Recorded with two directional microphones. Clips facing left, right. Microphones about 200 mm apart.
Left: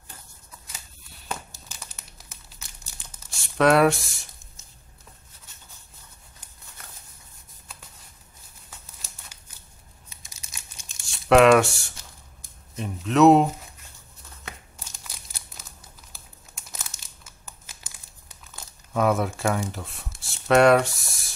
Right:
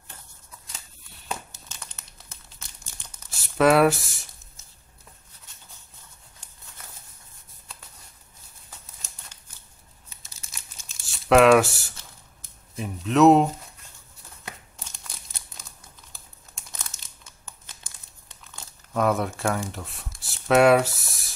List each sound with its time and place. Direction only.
1.5 s crumpling: 5° left (ahead or behind)
10.0 s crumpling: 15° left (ahead or behind)
11.2 s speech: centre (ahead or behind)
16.1 s crumpling: 5° left (ahead or behind)
18.9 s speech: centre (ahead or behind)